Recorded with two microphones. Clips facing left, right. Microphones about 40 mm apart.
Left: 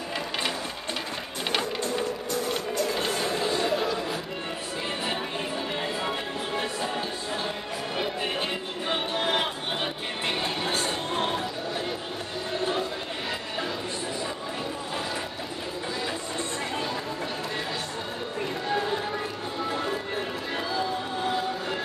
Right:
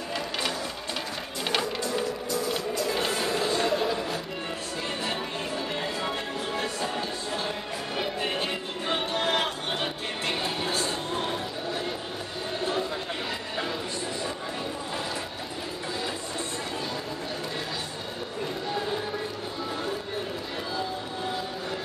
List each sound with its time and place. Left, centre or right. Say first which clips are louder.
1.6 s music: even; left
2.9 s music: even; centre
3.4 s a sound: even; centre
5.8 s music: left 1 dB; centre
10.2 s music: left 1 dB; left
10.7 s a sound: left 1 dB; left